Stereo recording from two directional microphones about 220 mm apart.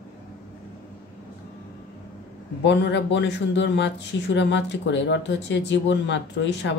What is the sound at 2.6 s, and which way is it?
Speech, 55° left (ahead or behind).